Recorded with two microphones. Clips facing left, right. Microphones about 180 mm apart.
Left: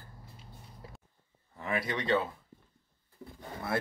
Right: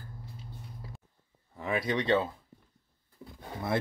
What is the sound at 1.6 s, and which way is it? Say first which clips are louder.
Speech: right 3 dB; 20° right (ahead or behind).